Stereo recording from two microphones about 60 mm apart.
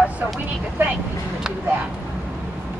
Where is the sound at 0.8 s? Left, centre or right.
Right.